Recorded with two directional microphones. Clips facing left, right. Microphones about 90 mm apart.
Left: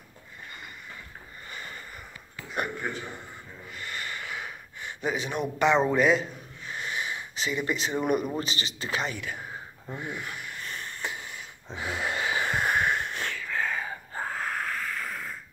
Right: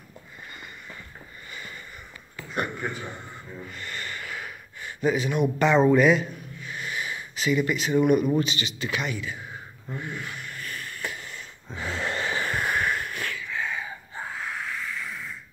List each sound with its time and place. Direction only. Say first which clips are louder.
1.5 s sniff: even; 35° left (ahead or behind)
2.8 s a man's voice: right 1 dB; 5° left (ahead or behind)
3.7 s gasp: left 2 dB; 15° left (ahead or behind)
5.9 s a sound: right 4 dB; 25° left (ahead or behind)
8.4 s speech: right 6 dB; 30° left (ahead or behind)
9.1 s speech: right 2 dB; 55° left (ahead or behind)
9.8 s speech: right 1 dB; 15° left (ahead or behind)
10.6 s a sound: right 1 dB; 25° left (ahead or behind)
13.4 s a sound: left 1 dB; 45° left (ahead or behind)